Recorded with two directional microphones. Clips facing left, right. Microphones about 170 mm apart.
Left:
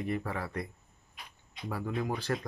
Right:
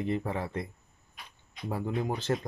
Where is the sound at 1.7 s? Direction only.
25° right (ahead or behind).